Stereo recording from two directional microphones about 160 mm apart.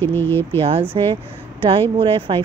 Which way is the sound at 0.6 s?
35° right (ahead or behind).